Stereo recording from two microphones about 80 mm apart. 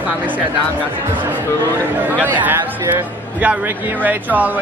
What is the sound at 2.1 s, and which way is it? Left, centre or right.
A man's voice, right.